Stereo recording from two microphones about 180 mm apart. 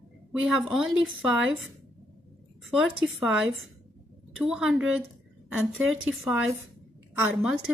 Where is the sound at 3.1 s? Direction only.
90° right.